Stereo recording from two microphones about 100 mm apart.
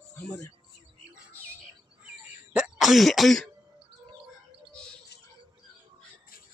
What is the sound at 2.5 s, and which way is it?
Speech, 5° right (ahead or behind).